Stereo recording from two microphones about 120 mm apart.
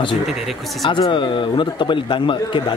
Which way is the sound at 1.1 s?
45° left (ahead or behind).